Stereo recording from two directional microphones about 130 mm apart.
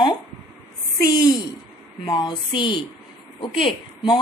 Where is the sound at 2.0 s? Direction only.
35° left (ahead or behind).